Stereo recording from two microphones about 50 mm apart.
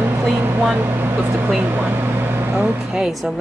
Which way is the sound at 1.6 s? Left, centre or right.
Right.